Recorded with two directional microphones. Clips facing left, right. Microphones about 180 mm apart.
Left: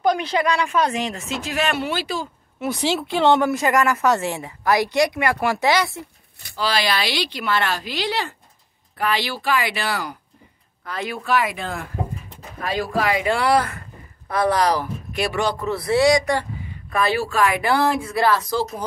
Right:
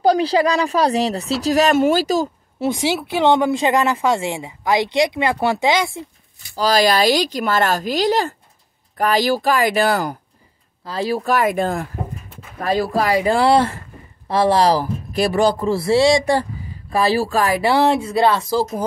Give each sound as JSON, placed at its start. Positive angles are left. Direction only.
{"t": 0.0, "sound": "speech", "side_deg": -35}
{"t": 2.7, "sound": "speech", "side_deg": -10}
{"t": 4.1, "sound": "speech", "side_deg": -15}
{"t": 6.5, "sound": "speech", "side_deg": -40}
{"t": 10.9, "sound": "speech", "side_deg": -35}